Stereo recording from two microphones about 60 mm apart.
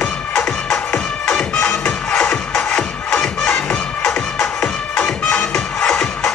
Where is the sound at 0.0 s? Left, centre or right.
Centre.